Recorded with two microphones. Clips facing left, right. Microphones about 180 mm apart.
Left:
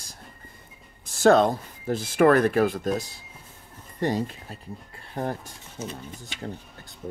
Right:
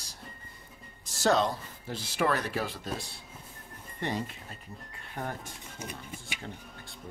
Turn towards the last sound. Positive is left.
turn(degrees=-10)  # may be behind; listen again after turning